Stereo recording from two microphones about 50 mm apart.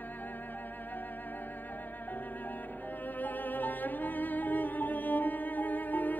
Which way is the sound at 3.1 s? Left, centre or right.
Left.